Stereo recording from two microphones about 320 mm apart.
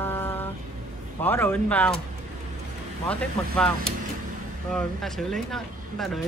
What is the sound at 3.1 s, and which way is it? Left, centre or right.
Speech, centre.